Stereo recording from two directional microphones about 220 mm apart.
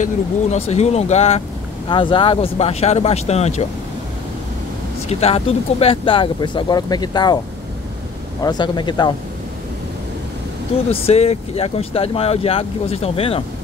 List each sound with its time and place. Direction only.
0.0 s speech: 30° left (ahead or behind)
5.0 s speech: 30° left (ahead or behind)
8.4 s speech: 20° left (ahead or behind)
10.9 s speech: 25° left (ahead or behind)